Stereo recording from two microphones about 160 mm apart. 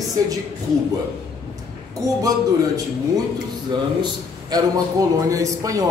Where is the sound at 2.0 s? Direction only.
20° right (ahead or behind).